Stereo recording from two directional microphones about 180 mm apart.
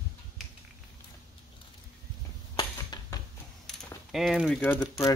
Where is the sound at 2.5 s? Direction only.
20° left (ahead or behind).